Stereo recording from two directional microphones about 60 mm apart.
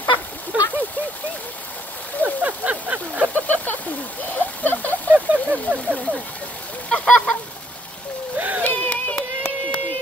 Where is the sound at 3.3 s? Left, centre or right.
Left.